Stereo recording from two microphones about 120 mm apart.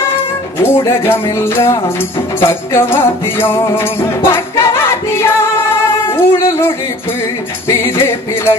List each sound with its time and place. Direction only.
0.7 s music: 20° left (ahead or behind)